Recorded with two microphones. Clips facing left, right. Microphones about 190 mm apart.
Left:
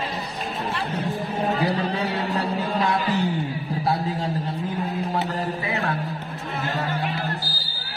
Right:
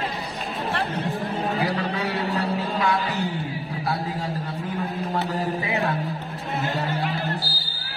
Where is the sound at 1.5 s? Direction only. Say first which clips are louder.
Left 3 dB; 35° left (ahead or behind).